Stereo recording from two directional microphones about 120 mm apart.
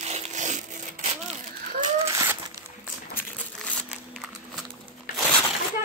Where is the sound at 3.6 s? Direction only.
5° left (ahead or behind).